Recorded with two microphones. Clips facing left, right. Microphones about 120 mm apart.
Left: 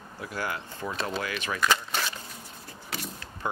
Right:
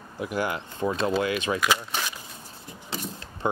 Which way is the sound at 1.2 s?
20° right (ahead or behind).